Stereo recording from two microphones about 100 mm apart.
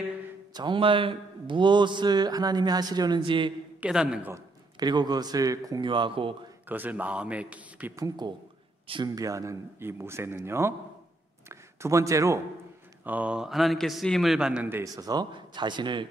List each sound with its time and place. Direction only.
0.6 s a man's voice: 55° right (ahead or behind)
3.2 s speech: 60° right (ahead or behind)
3.8 s a man's voice: 10° right (ahead or behind)
4.7 s speech: 45° right (ahead or behind)
5.8 s speech: 55° right (ahead or behind)
6.7 s a man's voice: 15° right (ahead or behind)
7.9 s a man's voice: 35° right (ahead or behind)
13.0 s a man's voice: 15° right (ahead or behind)
15.0 s a man's voice: 40° right (ahead or behind)